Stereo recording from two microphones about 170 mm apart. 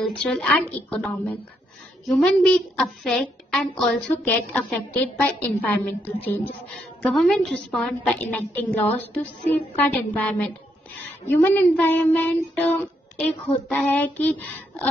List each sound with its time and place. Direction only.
0.0 s a woman's voice: 5° left (ahead or behind)